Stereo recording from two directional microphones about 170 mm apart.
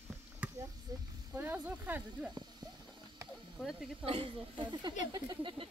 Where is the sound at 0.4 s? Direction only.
10° right (ahead or behind).